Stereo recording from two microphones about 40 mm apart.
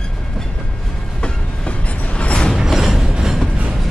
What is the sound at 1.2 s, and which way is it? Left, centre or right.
Train, left.